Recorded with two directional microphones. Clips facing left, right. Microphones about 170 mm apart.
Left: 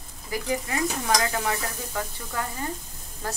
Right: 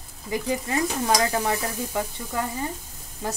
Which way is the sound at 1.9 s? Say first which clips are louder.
Right 3 dB; 20° right (ahead or behind).